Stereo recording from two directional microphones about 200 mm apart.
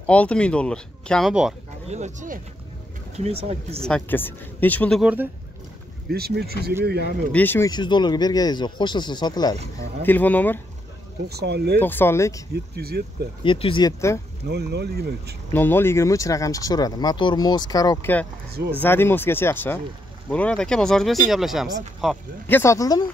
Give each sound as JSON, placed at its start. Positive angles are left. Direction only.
{"t": 0.0, "sound": "speech", "side_deg": 5}
{"t": 1.9, "sound": "speech", "side_deg": -35}
{"t": 3.2, "sound": "speech", "side_deg": -30}
{"t": 3.8, "sound": "speech", "side_deg": 5}
{"t": 6.0, "sound": "speech", "side_deg": -50}
{"t": 7.3, "sound": "speech", "side_deg": 10}
{"t": 10.0, "sound": "speech", "side_deg": 10}
{"t": 11.2, "sound": "speech", "side_deg": -55}
{"t": 11.8, "sound": "speech", "side_deg": 10}
{"t": 12.5, "sound": "speech", "side_deg": -55}
{"t": 13.4, "sound": "speech", "side_deg": 25}
{"t": 14.4, "sound": "speech", "side_deg": -55}
{"t": 15.5, "sound": "speech", "side_deg": 10}